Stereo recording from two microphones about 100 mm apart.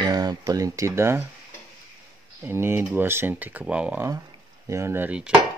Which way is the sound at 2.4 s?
25° right (ahead or behind).